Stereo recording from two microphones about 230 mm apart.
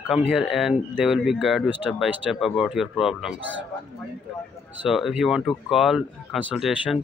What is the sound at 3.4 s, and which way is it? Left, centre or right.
Speech, right.